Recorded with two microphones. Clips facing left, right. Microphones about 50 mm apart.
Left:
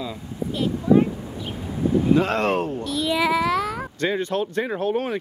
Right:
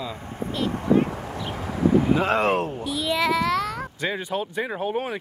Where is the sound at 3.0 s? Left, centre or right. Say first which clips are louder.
Left 1 dB; centre.